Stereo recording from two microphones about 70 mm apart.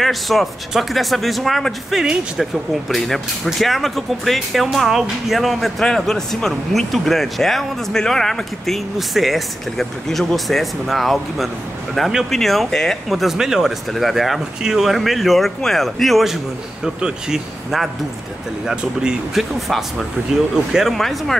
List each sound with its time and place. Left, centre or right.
0.0 s speech: centre
20.7 s speech: centre